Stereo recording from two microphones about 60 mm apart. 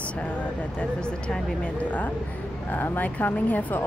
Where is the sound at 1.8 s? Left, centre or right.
Left.